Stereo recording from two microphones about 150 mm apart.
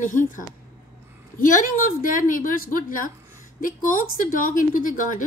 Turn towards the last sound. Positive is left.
turn(degrees=60)  # may be behind; listen again after turning